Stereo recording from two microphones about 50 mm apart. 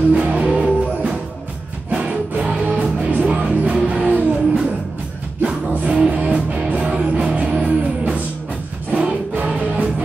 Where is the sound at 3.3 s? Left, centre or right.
Right.